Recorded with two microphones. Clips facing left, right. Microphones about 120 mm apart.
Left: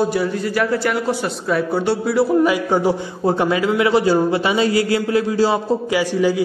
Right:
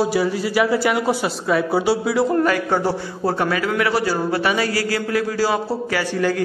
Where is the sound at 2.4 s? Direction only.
15° left (ahead or behind).